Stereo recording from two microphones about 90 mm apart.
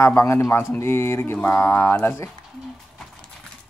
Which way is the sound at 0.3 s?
25° left (ahead or behind).